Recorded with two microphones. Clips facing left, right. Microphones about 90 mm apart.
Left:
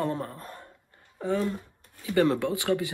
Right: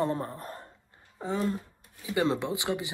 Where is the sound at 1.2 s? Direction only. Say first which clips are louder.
Left 2 dB; 20° right (ahead or behind).